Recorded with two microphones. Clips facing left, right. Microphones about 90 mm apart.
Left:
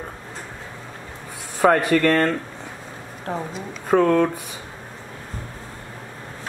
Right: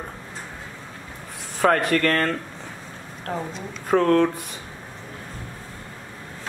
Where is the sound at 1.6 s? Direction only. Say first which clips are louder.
Left 3 dB; 5° left (ahead or behind).